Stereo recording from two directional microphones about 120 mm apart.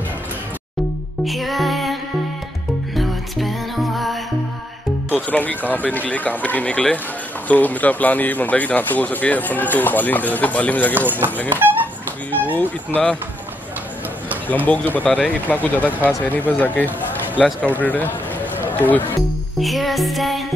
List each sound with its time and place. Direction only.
1.2 s music: centre (ahead or behind)
3.0 s music: centre (ahead or behind)
5.1 s speech: 15° left (ahead or behind)
11.0 s speech: 15° right (ahead or behind)
12.5 s speech: 10° left (ahead or behind)
14.7 s speech: 10° left (ahead or behind)
19.6 s music: centre (ahead or behind)